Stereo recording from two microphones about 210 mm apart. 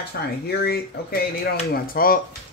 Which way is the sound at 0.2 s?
50° left (ahead or behind).